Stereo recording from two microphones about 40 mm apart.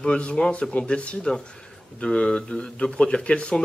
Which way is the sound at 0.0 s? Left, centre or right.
Left.